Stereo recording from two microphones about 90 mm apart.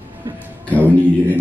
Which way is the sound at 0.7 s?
20° right (ahead or behind).